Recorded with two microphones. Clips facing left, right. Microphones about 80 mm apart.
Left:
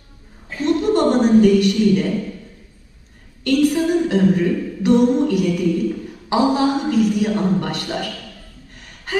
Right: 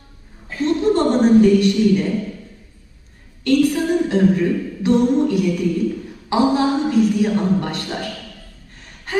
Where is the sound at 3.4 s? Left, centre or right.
Right.